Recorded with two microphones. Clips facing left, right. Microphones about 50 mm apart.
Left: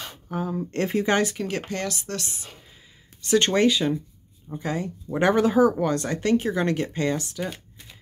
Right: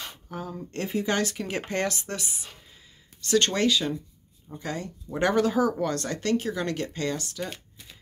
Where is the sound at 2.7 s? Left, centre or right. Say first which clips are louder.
Left 2 dB; centre.